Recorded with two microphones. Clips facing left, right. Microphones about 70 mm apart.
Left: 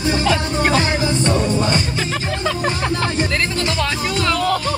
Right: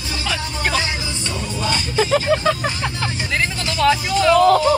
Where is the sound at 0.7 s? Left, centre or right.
Left.